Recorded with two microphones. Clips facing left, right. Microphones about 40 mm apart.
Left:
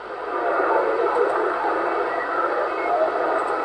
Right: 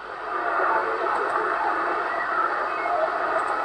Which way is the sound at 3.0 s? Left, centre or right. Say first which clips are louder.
Left 3 dB; centre.